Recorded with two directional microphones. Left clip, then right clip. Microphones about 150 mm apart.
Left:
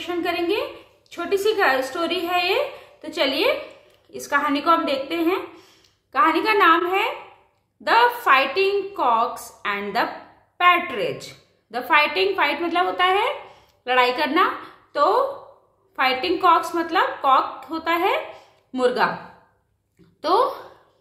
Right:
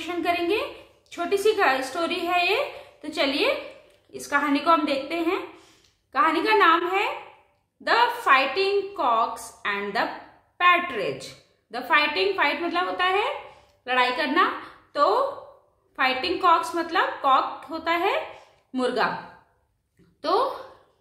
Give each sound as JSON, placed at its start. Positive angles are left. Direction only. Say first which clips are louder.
{"t": 0.0, "sound": "a woman's voice", "louder": "left 1 dB", "side_deg": 10}
{"t": 20.2, "sound": "a woman's voice", "louder": "left 4 dB", "side_deg": 35}